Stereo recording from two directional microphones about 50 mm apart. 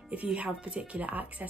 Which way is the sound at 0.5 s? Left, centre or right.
Centre.